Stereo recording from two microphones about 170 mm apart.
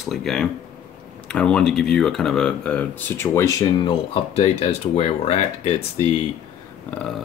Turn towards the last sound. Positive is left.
turn(degrees=10)  # may be behind; listen again after turning